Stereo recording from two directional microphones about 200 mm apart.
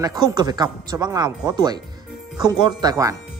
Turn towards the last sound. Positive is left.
turn(degrees=-15)  # may be behind; listen again after turning